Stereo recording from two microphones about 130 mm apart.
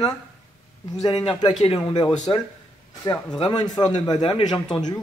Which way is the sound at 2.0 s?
35° left (ahead or behind).